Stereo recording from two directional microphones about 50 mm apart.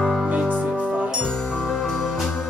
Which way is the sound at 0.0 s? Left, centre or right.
Centre.